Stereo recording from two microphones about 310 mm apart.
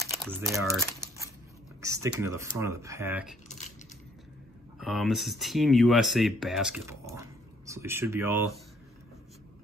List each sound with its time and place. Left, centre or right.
0.0 s speech: centre
3.4 s coin: left
4.7 s speech: centre